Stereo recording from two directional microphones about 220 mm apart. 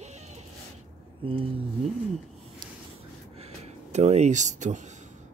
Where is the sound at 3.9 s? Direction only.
30° right (ahead or behind).